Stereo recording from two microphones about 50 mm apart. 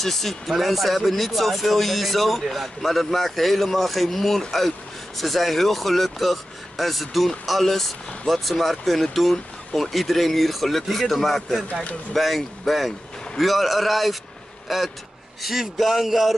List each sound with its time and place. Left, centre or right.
0.0 s speech: centre